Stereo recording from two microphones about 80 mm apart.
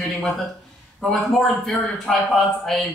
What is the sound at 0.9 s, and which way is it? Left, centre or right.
A man's voice, centre.